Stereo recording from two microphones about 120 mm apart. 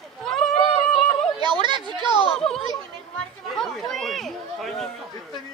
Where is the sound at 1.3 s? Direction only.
40° right (ahead or behind).